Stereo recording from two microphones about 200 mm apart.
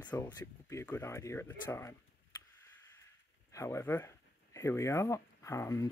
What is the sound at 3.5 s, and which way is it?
Speech, 15° left (ahead or behind).